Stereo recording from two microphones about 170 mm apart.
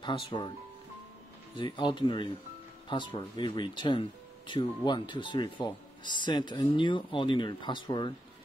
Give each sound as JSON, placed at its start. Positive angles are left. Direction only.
{"t": 0.0, "sound": "speech", "side_deg": 30}
{"t": 1.6, "sound": "speech", "side_deg": 30}